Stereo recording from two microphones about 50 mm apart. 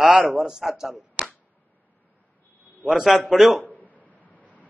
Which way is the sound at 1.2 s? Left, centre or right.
Right.